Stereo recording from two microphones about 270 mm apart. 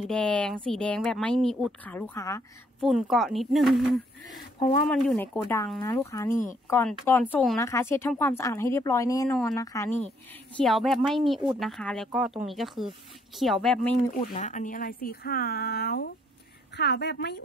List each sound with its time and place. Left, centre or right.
0.0 s speech: centre
2.8 s speech: centre
10.6 s speech: centre
14.2 s speech: left